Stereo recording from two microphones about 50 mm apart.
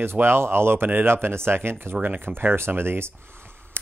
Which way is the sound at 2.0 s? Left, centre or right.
Right.